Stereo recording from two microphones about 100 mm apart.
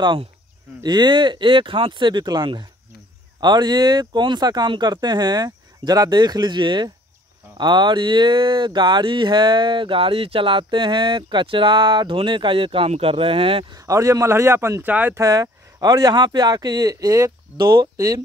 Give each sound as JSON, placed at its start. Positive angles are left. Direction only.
{"t": 0.8, "sound": "speech", "side_deg": -45}
{"t": 13.7, "sound": "speech", "side_deg": -30}
{"t": 15.1, "sound": "speech", "side_deg": -35}
{"t": 17.9, "sound": "speech", "side_deg": -35}